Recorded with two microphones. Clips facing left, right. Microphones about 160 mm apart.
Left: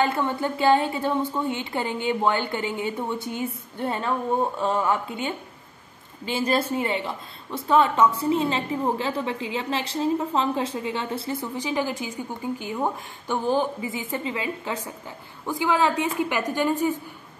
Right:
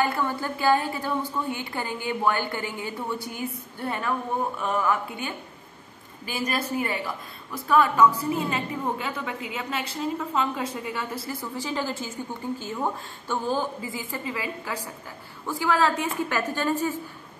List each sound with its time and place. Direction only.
0.0 s a woman's voice: 20° left (ahead or behind)